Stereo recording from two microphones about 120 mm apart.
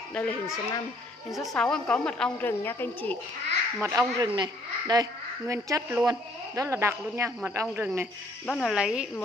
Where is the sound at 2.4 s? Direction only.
15° left (ahead or behind).